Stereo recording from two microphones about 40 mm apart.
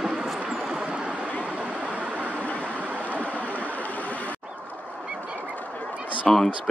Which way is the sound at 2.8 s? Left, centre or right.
Right.